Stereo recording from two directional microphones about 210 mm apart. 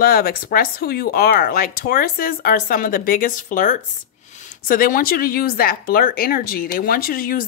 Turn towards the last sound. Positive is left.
turn(degrees=45)  # may be behind; listen again after turning